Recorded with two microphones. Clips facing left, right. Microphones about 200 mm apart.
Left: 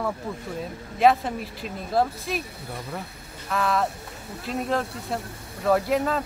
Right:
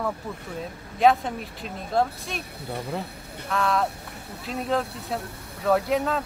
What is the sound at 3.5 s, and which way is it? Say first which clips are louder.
Speech: even; centre (ahead or behind).